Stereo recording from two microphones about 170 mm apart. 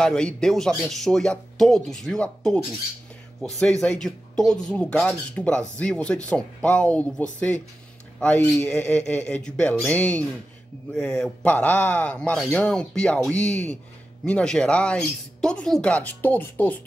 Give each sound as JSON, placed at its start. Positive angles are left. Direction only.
{"t": 0.0, "sound": "speech", "side_deg": 5}